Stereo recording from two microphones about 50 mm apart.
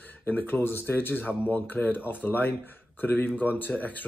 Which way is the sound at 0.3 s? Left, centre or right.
Left.